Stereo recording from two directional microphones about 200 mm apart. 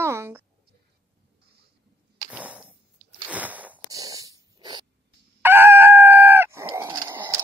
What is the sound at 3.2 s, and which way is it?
Sneeze, 10° right (ahead or behind).